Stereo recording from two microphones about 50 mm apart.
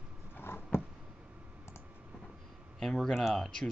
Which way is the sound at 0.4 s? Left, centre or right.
Left.